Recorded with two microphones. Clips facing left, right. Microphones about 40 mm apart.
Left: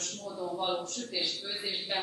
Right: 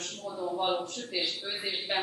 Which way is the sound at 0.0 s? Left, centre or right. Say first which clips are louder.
Right 2 dB; centre.